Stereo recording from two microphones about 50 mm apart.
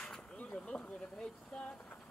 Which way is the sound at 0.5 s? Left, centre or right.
Centre.